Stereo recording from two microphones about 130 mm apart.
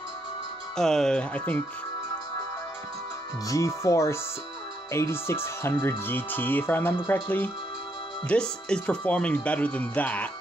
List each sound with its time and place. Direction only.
0.7 s speech: 5° left (ahead or behind)
3.4 s speech: 25° left (ahead or behind)